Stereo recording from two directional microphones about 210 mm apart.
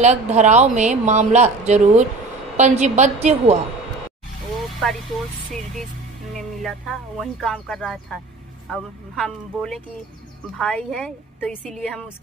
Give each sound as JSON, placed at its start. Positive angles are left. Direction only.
{"t": 0.0, "sound": "speech", "side_deg": -35}
{"t": 6.3, "sound": "speech", "side_deg": 0}